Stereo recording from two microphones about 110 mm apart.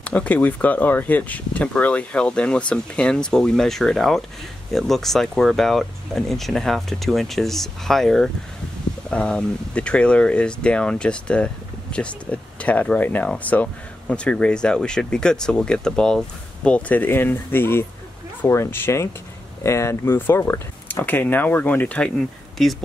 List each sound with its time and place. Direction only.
0.0 s speech: 10° left (ahead or behind)